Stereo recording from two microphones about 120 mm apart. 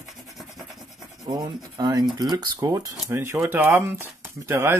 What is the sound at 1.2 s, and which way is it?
Rub, 30° right (ahead or behind).